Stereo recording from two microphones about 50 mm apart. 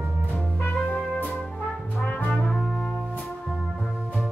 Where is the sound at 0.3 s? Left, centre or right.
Left.